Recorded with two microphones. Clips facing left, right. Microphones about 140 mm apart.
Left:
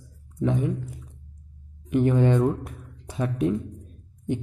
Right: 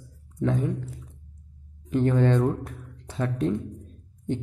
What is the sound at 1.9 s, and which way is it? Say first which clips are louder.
Speech: left 1 dB; 15° left (ahead or behind).